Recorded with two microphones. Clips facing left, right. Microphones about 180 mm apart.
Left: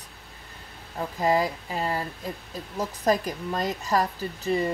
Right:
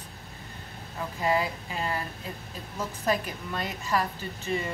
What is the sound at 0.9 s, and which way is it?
Speech, 40° left (ahead or behind).